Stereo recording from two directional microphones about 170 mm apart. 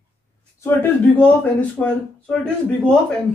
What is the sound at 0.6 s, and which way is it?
Speech, 10° left (ahead or behind).